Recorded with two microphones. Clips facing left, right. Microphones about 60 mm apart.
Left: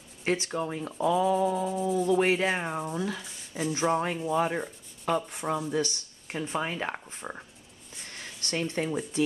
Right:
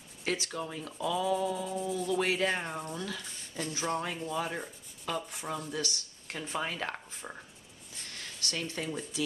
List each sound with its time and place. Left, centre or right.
0.2 s speech: left
1.6 s speech: centre
2.1 s speech: left
2.4 s speech: centre
4.3 s speech: left
6.2 s speech: centre
8.1 s a sound: left
9.1 s speech: left